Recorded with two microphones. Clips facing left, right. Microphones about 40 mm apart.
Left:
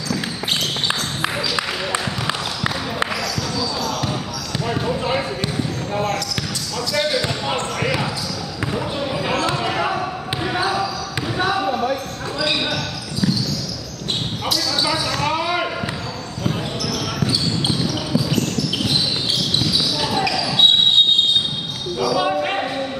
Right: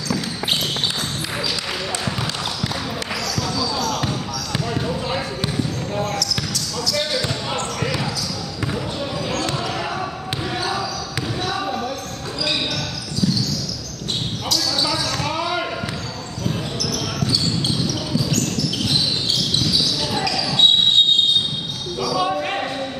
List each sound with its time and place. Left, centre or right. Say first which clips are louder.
0.1 s basketball bounce: even; centre
0.8 s basketball bounce: left 3 dB; left
3.1 s basketball bounce: left 1 dB; centre
4.6 s basketball bounce: left 5 dB; centre
7.0 s basketball bounce: left 5 dB; centre
9.3 s basketball bounce: left 4 dB; centre
14.5 s basketball bounce: left 1 dB; centre
17.3 s basketball bounce: even; centre
22.0 s a sound: left 2 dB; centre